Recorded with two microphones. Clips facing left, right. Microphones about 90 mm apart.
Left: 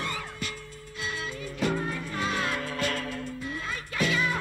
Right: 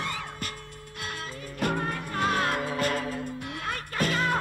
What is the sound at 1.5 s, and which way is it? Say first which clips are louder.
Music: even; 50° right (ahead or behind).